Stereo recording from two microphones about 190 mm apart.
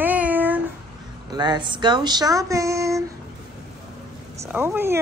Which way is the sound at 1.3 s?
20° right (ahead or behind).